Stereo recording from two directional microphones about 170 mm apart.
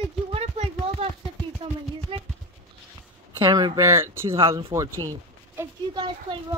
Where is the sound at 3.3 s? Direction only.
25° right (ahead or behind).